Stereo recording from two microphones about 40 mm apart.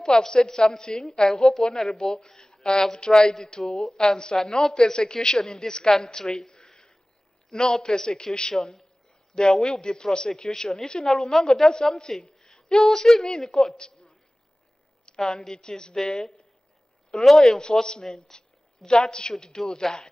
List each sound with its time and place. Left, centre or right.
0.0 s a woman's voice: centre
11.1 s speech: centre
13.7 s a sound: left
15.2 s speech: centre
17.6 s a woman's voice: left